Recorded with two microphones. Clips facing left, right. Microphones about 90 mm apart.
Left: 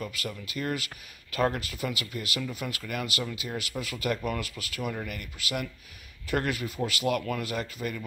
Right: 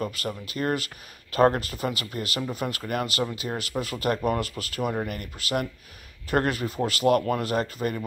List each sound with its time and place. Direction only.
0.0 s speech: 40° right (ahead or behind)